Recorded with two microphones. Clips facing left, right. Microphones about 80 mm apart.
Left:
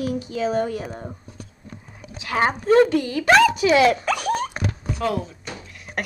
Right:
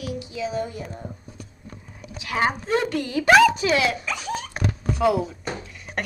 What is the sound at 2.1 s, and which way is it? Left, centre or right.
Speech, left.